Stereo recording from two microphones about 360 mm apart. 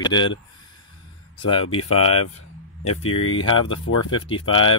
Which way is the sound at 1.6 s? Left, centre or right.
Left.